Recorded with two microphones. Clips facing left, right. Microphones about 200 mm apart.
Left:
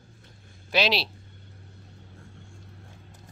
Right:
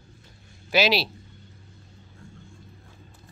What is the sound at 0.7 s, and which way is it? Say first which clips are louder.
Speech: right 3 dB; 5° right (ahead or behind).